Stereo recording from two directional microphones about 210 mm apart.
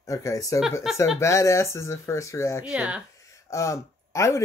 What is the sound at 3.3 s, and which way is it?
Speech, 15° left (ahead or behind).